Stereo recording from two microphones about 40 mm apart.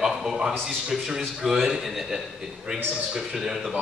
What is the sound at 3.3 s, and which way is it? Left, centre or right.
Speech, centre.